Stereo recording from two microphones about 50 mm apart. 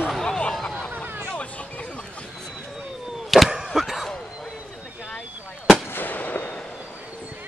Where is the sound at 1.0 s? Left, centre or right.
Right.